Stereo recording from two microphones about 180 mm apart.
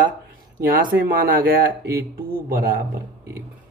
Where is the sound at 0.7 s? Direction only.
50° right (ahead or behind).